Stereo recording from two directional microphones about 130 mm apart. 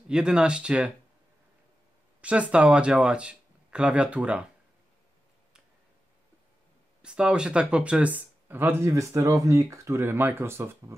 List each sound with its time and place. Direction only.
0.1 s speech: 5° right (ahead or behind)
2.2 s speech: 10° right (ahead or behind)
7.0 s speech: 5° right (ahead or behind)